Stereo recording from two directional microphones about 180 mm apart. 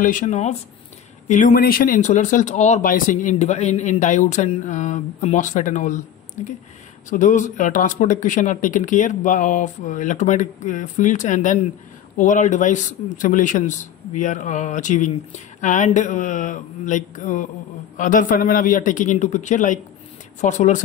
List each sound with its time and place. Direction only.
0.0 s speech: 45° left (ahead or behind)